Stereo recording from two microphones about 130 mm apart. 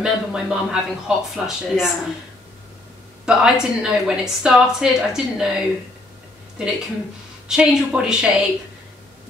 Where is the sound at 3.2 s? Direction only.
5° right (ahead or behind).